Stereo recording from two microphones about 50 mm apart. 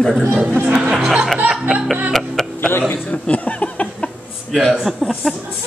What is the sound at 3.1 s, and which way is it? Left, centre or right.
Speech, left.